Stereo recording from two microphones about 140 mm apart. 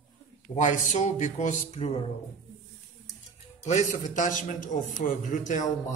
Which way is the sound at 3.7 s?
55° left (ahead or behind).